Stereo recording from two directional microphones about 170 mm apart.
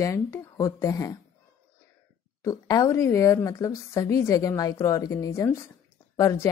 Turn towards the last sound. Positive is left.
turn(degrees=20)  # may be behind; listen again after turning